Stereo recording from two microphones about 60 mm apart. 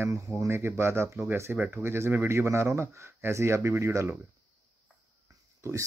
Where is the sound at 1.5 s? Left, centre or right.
Right.